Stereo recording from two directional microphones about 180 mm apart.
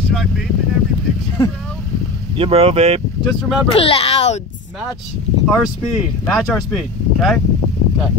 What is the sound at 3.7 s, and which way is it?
Speech, 30° left (ahead or behind).